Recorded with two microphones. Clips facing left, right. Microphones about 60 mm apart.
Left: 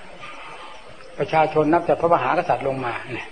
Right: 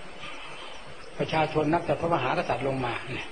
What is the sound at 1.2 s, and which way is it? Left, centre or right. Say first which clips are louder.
Speech: left 7 dB; left.